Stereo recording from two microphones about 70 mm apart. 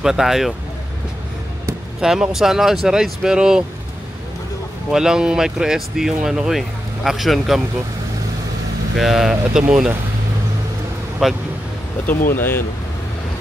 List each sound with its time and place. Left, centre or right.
0.0 s speech: centre
2.0 s speech: centre
4.9 s speech: centre
8.9 s speech: centre
11.2 s speech: centre
12.1 s speech: left